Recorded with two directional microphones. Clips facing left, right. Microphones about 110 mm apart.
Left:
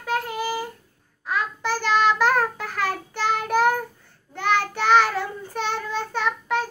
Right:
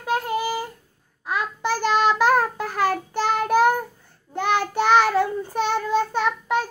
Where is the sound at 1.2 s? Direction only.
15° right (ahead or behind).